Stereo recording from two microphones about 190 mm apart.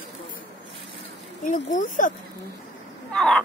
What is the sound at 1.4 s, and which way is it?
Speech, 40° left (ahead or behind).